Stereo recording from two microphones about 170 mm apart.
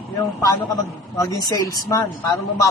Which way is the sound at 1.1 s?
20° left (ahead or behind).